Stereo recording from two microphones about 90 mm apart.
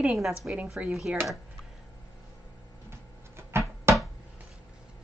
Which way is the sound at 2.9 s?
30° right (ahead or behind).